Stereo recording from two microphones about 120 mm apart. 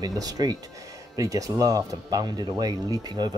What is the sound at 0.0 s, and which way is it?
Speech, 30° right (ahead or behind).